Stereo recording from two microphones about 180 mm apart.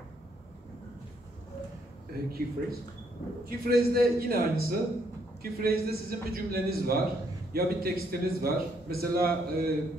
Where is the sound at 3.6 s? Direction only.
55° right (ahead or behind).